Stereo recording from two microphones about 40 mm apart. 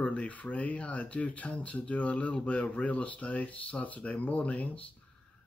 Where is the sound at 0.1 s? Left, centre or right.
Left.